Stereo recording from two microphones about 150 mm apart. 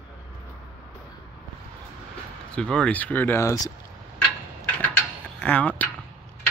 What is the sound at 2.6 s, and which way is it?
Speech, 5° left (ahead or behind).